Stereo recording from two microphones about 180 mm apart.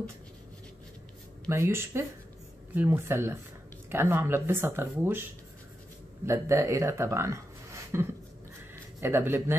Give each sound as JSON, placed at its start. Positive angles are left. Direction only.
{"t": 1.5, "sound": "speech", "side_deg": -15}
{"t": 6.2, "sound": "speech", "side_deg": -15}